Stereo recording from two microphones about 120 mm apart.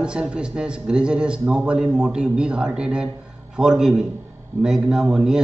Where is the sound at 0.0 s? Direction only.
10° right (ahead or behind).